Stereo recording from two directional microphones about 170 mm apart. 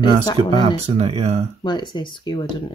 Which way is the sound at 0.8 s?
35° right (ahead or behind).